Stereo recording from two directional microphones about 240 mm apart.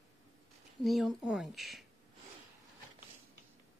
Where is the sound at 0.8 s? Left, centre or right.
Centre.